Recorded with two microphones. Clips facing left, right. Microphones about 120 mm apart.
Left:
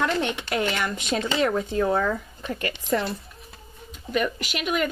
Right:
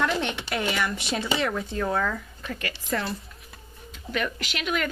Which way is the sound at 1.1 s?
5° right (ahead or behind).